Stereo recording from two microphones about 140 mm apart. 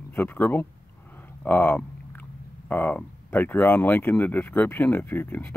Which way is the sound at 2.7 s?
10° left (ahead or behind).